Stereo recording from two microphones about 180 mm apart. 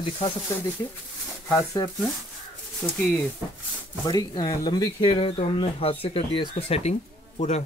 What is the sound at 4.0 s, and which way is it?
Speech, 20° left (ahead or behind).